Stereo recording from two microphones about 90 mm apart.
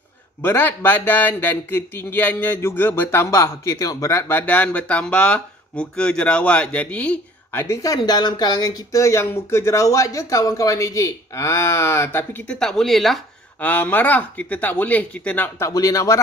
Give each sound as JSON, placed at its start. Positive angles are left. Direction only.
{"t": 0.4, "sound": "a man's voice", "side_deg": 20}
{"t": 4.2, "sound": "speech", "side_deg": 20}
{"t": 7.6, "sound": "speech", "side_deg": 35}
{"t": 12.4, "sound": "speech", "side_deg": 5}
{"t": 13.6, "sound": "a man's voice", "side_deg": 20}
{"t": 15.6, "sound": "speech", "side_deg": 35}